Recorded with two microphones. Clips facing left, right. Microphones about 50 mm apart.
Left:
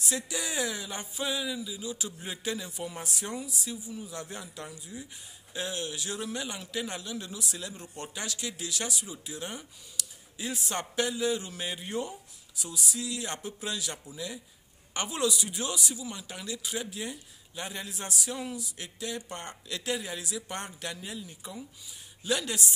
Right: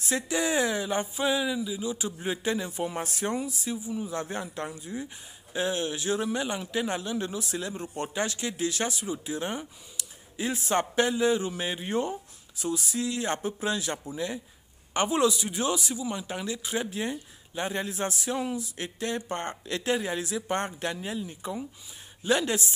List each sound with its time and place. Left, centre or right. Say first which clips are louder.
0.0 s speech: right 6 dB; right